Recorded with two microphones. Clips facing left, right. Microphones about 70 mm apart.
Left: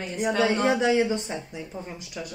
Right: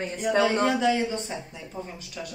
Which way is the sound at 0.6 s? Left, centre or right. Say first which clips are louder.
Left 1 dB; left.